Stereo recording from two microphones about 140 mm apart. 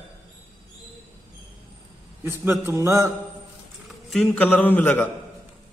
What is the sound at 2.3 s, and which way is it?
Mantra, 20° right (ahead or behind).